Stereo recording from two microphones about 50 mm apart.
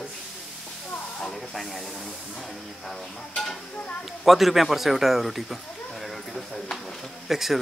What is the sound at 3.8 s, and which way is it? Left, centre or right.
Speech, left.